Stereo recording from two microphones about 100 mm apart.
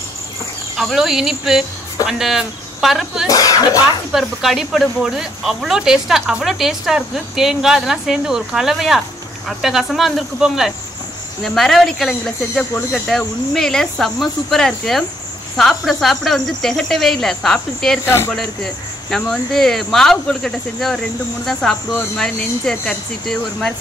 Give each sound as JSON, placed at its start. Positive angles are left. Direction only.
{"t": 0.7, "sound": "speech", "side_deg": -5}
{"t": 3.3, "sound": "speech", "side_deg": 40}
{"t": 4.1, "sound": "speech", "side_deg": 0}
{"t": 18.0, "sound": "speech", "side_deg": 25}
{"t": 18.3, "sound": "speech", "side_deg": 0}